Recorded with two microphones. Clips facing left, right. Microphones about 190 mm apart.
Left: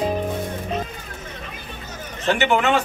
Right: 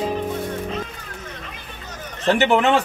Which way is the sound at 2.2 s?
35° right (ahead or behind).